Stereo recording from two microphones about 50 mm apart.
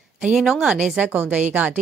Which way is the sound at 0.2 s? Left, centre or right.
Centre.